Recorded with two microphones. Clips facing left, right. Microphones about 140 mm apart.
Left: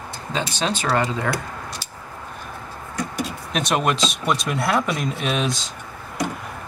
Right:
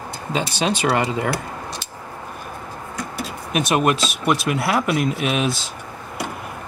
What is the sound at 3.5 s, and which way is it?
Speech, 5° right (ahead or behind).